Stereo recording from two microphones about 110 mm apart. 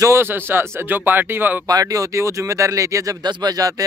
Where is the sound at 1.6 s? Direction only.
35° right (ahead or behind).